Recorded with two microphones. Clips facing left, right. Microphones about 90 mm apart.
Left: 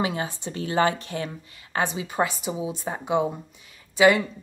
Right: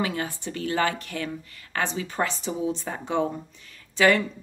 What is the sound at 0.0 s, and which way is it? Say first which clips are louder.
Speech: left 1 dB; 20° left (ahead or behind).